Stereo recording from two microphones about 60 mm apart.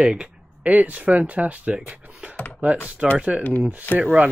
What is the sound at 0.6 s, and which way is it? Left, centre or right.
Speech, right.